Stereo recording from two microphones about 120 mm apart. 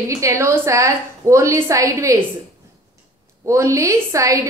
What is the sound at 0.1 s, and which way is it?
A woman's voice, 25° right (ahead or behind).